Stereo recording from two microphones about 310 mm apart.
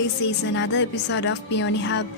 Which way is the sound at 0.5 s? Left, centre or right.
Left.